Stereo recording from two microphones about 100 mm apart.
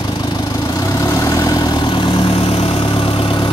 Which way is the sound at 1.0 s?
35° left (ahead or behind).